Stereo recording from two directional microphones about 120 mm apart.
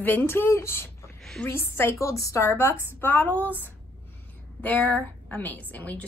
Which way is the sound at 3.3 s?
15° right (ahead or behind).